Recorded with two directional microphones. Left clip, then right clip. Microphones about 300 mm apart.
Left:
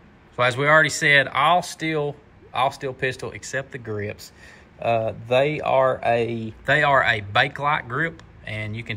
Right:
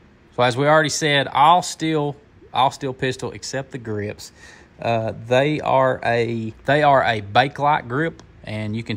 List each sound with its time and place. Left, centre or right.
0.4 s speech: centre
4.8 s speech: right
6.6 s speech: centre